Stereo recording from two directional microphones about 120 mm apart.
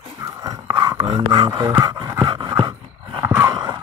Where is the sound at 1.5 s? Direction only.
30° right (ahead or behind).